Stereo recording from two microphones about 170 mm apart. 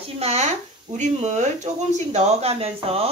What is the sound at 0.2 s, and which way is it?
Speech, 40° right (ahead or behind).